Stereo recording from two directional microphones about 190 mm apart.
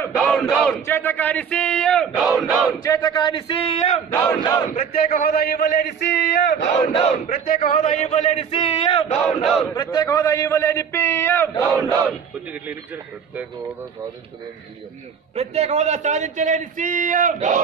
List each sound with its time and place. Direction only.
0.0 s a sound: 5° left (ahead or behind)
0.8 s a man's voice: 10° left (ahead or behind)
2.8 s a man's voice: 20° left (ahead or behind); by 4.0 s 35° left (ahead or behind)
4.4 s speech: 20° left (ahead or behind)
4.7 s a man's voice: 45° left (ahead or behind)
6.5 s speech: 40° left (ahead or behind)
9.4 s a man's voice: centre (ahead or behind)
9.8 s a man's voice: 20° left (ahead or behind)
15.3 s a man's voice: 35° right (ahead or behind)